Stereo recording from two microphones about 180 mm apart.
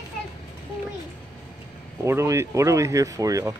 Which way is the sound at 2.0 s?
15° right (ahead or behind).